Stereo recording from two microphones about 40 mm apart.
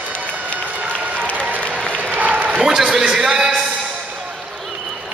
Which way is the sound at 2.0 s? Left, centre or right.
Right.